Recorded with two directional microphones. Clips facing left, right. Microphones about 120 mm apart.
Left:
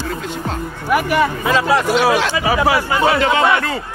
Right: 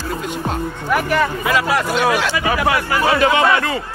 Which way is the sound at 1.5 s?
25° left (ahead or behind).